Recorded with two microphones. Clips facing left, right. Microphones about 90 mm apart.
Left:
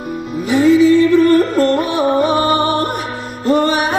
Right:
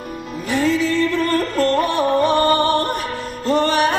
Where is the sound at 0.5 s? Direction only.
10° left (ahead or behind).